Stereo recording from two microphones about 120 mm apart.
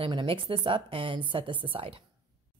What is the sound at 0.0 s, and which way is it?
Speech, 45° right (ahead or behind).